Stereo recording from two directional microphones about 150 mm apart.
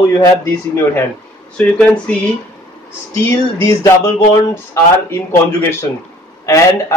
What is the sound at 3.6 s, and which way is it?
A man's voice, 20° left (ahead or behind).